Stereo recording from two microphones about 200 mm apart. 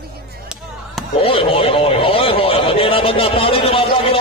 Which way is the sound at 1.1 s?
30° left (ahead or behind).